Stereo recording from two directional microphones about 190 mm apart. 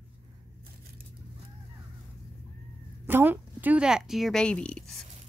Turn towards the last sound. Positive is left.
turn(degrees=5)  # may be behind; listen again after turning